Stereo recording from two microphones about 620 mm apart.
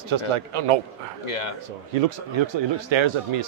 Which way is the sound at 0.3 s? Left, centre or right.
Right.